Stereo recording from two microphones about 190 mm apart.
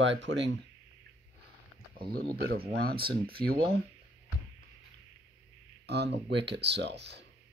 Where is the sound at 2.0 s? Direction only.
50° right (ahead or behind).